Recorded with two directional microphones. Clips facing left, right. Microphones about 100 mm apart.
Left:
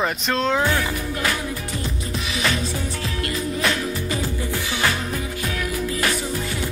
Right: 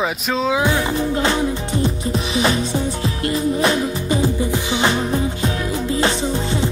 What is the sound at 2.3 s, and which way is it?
Music, 35° right (ahead or behind).